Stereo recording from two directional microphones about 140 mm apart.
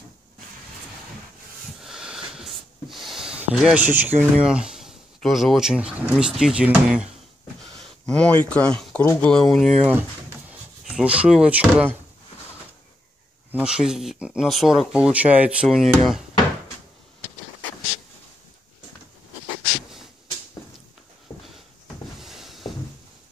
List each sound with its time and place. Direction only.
1.8 s a sound: 5° right (ahead or behind)
4.2 s speech: 5° right (ahead or behind)
8.1 s speech: 5° left (ahead or behind)
9.0 s speech: 20° left (ahead or behind)
9.3 s speech: centre (ahead or behind)
10.9 s speech: 5° right (ahead or behind)
13.5 s speech: 5° right (ahead or behind)
21.3 s a sound: 20° left (ahead or behind)
22.2 s a sound: centre (ahead or behind)